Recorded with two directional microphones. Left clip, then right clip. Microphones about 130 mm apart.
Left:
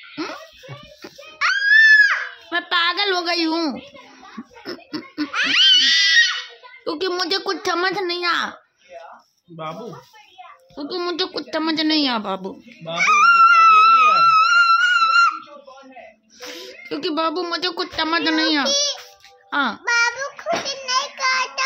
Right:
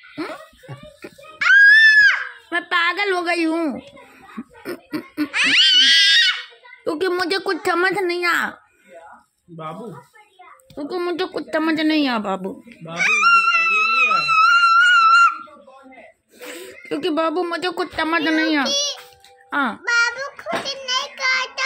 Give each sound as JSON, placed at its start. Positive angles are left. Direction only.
{"t": 0.1, "sound": "a sound", "side_deg": 5}
{"t": 1.4, "sound": "screaming", "side_deg": 10}
{"t": 2.5, "sound": "a sound", "side_deg": -10}
{"t": 5.3, "sound": "screaming", "side_deg": 10}
{"t": 6.8, "sound": "a woman's voice", "side_deg": -15}
{"t": 9.6, "sound": "speech", "side_deg": 40}
{"t": 10.8, "sound": "a woman's voice", "side_deg": -5}
{"t": 12.9, "sound": "wail", "side_deg": 20}
{"t": 16.5, "sound": "speech", "side_deg": -15}
{"t": 18.7, "sound": "music", "side_deg": 20}
{"t": 19.5, "sound": "a woman's voice", "side_deg": -5}
{"t": 19.8, "sound": "child singing", "side_deg": 10}